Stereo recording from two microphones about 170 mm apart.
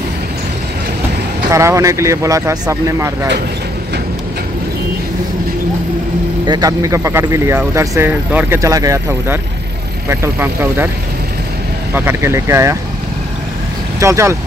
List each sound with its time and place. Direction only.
1.5 s speech: 15° right (ahead or behind)
6.4 s speech: 25° right (ahead or behind)
11.9 s speech: 15° right (ahead or behind)
13.9 s speech: 15° right (ahead or behind)